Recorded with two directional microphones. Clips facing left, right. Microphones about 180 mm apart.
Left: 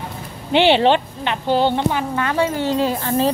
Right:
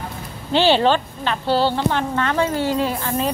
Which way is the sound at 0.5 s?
20° left (ahead or behind).